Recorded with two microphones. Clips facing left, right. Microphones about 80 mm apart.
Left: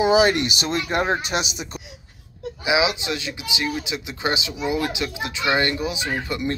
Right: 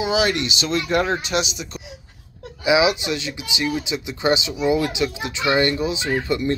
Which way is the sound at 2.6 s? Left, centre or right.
Centre.